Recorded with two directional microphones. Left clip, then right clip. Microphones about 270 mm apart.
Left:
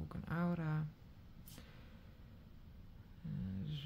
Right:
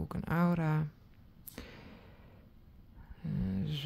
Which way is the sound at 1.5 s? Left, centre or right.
Right.